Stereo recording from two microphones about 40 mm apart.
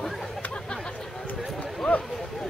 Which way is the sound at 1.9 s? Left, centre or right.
Left.